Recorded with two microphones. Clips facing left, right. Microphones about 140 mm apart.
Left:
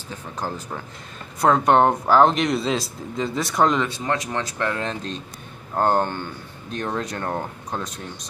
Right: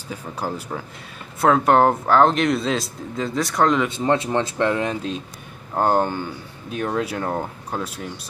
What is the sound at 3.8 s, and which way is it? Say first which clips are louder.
Speech: right 5 dB; 25° right (ahead or behind).